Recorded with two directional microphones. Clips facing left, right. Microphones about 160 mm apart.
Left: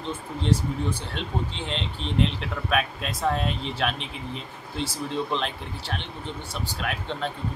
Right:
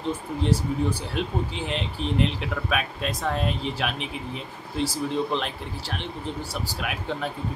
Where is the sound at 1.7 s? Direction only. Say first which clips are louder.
Right 3 dB; 5° right (ahead or behind).